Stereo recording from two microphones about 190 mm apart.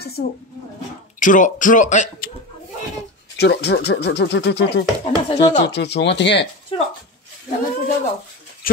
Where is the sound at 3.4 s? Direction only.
60° left (ahead or behind).